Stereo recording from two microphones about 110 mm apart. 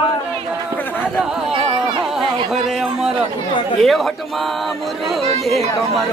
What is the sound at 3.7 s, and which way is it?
Speech, centre (ahead or behind).